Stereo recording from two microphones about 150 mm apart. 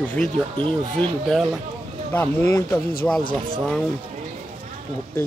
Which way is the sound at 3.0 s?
10° left (ahead or behind).